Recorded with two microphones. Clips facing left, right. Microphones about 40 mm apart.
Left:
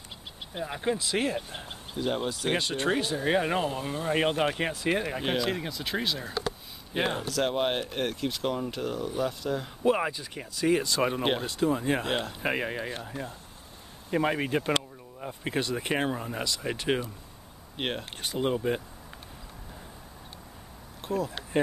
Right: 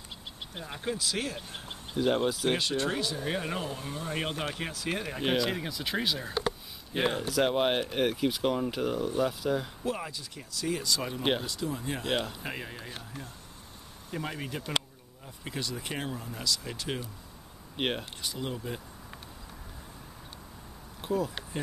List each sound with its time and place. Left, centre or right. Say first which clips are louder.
0.6 s speech: left 6 dB; centre
0.9 s speech: left 5 dB; left
1.7 s speech: right 3 dB; centre
3.2 s speech: left 7 dB; left
5.2 s speech: even; centre
7.2 s speech: right 1 dB; centre
9.9 s speech: left 8 dB; left
12.1 s speech: even; centre
12.4 s speech: left 9 dB; left
17.7 s speech: right 1 dB; centre
18.2 s speech: left 8 dB; left
21.0 s a sound: even; centre